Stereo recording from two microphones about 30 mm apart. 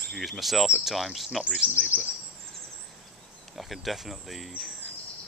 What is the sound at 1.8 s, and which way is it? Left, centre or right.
Speech, right.